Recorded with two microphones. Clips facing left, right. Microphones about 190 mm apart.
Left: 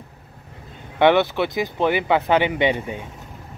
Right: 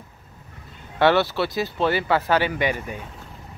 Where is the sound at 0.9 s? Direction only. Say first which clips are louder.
Left 2 dB; 20° left (ahead or behind).